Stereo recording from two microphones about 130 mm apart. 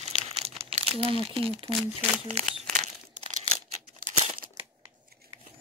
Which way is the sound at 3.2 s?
65° right (ahead or behind).